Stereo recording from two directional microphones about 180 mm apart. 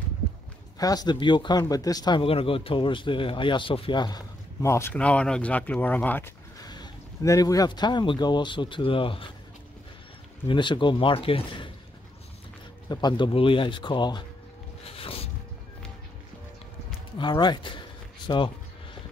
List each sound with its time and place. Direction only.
0.7 s speech: 20° left (ahead or behind)
6.6 s speech: 20° left (ahead or behind)
10.5 s speech: 25° left (ahead or behind)
12.8 s speech: 25° left (ahead or behind)
14.9 s music: 30° left (ahead or behind)
17.2 s speech: 25° left (ahead or behind)